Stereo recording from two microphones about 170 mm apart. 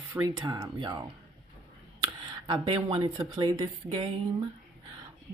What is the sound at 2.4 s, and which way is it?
Speech, 30° right (ahead or behind).